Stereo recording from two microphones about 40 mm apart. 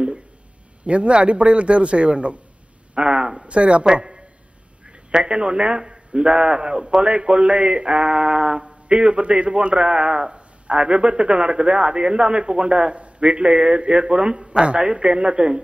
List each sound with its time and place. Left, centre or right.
0.8 s a man's voice: right
2.9 s a sound: right
3.4 s a man's voice: right